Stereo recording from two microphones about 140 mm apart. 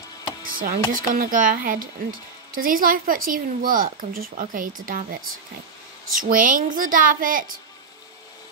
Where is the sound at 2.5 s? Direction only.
90° right.